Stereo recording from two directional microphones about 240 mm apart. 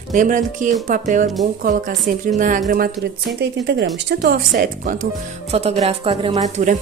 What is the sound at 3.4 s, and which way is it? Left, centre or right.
Speech, right.